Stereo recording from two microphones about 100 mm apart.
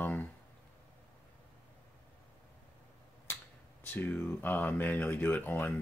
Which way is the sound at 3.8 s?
20° left (ahead or behind).